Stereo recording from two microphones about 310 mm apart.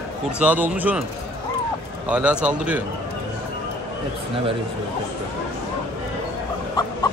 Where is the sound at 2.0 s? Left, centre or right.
Centre.